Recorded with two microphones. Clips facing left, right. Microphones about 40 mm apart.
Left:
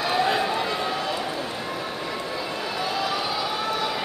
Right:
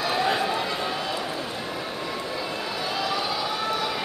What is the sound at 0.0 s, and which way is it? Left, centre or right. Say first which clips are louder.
Run: left 1 dB; centre.